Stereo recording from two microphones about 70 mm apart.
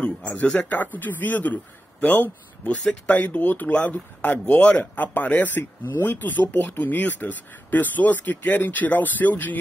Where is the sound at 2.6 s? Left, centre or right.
Centre.